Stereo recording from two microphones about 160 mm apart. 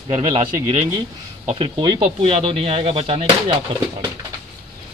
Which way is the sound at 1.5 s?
30° right (ahead or behind).